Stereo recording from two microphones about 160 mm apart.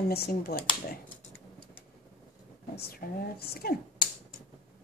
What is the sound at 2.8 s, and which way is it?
Speech, 75° left (ahead or behind).